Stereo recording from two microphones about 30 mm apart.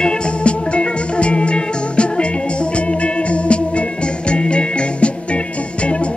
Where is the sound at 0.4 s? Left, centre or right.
Left.